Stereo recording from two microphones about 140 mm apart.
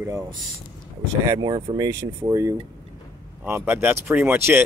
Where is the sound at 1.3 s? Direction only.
30° right (ahead or behind).